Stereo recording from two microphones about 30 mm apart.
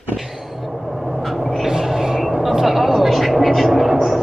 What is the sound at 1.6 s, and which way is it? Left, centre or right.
Vehicle, centre.